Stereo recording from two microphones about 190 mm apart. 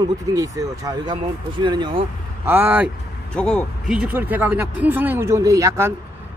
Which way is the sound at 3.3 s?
5° left (ahead or behind).